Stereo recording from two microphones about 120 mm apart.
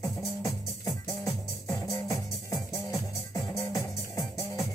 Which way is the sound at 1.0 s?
25° left (ahead or behind).